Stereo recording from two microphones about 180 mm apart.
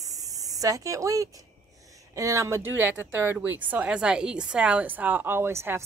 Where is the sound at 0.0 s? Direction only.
20° right (ahead or behind).